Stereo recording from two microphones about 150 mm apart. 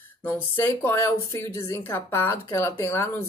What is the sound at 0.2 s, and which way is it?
Speech, 15° left (ahead or behind).